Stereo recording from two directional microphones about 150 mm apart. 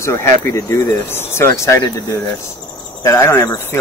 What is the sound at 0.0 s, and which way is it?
Speech, 20° left (ahead or behind).